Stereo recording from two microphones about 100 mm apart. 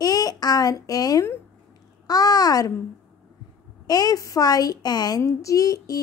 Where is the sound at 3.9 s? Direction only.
40° left (ahead or behind).